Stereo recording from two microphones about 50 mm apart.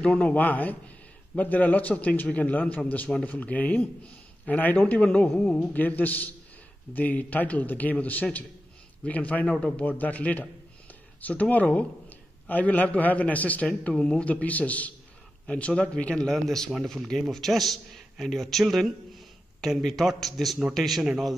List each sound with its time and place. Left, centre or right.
0.0 s a man's voice: left
5.4 s speech: left
5.8 s a man's voice: left
13.9 s speech: centre
14.2 s a man's voice: left
15.4 s speech: centre
16.3 s a man's voice: centre